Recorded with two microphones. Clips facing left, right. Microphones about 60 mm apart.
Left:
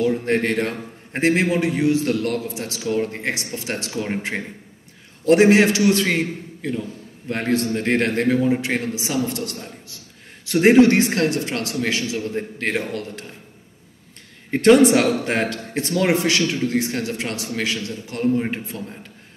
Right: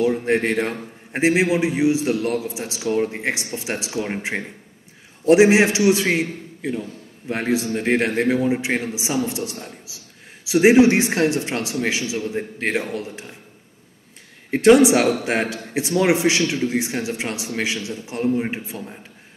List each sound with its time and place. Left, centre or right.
0.0 s a man's voice: centre
9.6 s a man's voice: centre
14.5 s a man's voice: centre